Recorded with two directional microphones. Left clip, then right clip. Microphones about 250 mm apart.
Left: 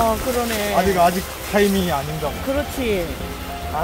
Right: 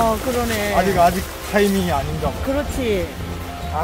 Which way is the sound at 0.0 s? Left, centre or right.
Centre.